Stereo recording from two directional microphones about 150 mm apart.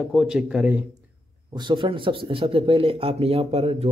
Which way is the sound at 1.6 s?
30° right (ahead or behind).